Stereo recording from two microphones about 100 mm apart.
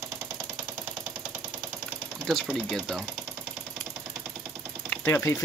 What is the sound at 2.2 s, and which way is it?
Speech, centre (ahead or behind).